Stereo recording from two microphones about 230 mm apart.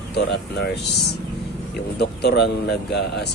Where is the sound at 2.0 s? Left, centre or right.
Left.